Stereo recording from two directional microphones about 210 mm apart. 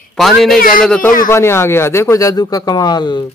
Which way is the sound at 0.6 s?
40° left (ahead or behind).